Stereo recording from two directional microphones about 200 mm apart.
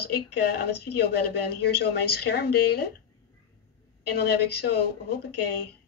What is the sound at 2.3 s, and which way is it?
Speech, 50° left (ahead or behind).